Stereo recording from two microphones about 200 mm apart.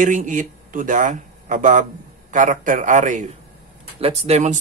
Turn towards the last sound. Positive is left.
turn(degrees=-35)  # may be behind; listen again after turning